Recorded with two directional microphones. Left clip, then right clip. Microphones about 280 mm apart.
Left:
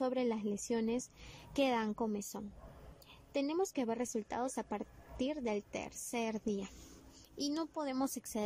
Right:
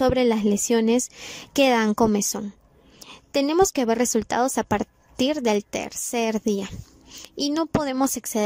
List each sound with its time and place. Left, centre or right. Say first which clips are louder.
0.0 s a woman's voice: right 16 dB; right